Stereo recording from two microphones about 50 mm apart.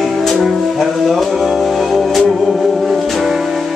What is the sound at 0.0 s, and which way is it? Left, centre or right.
Music, centre.